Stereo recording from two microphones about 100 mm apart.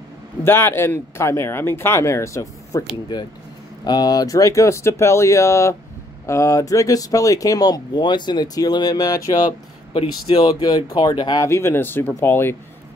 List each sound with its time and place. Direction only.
0.4 s speech: 25° left (ahead or behind)
3.1 s speech: 40° left (ahead or behind)
11.4 s speech: 25° left (ahead or behind)